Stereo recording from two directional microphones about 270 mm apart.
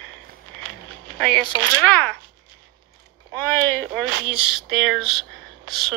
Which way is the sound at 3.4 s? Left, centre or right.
Centre.